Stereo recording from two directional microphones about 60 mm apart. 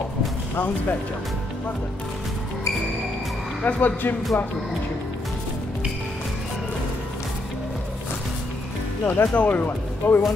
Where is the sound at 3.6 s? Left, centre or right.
Left.